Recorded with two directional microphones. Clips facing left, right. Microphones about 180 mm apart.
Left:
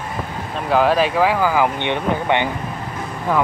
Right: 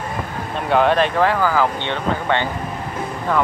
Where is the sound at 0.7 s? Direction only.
5° left (ahead or behind).